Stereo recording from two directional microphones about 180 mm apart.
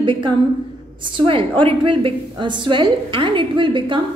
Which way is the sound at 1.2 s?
30° right (ahead or behind).